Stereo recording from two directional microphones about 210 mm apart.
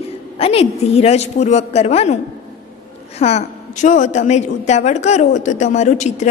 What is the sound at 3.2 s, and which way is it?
A woman's voice, 30° left (ahead or behind).